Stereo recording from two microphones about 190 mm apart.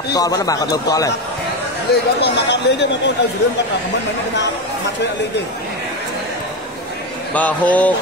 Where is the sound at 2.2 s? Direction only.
65° left (ahead or behind).